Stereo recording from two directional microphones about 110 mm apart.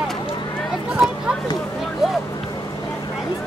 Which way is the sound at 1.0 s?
Centre (ahead or behind).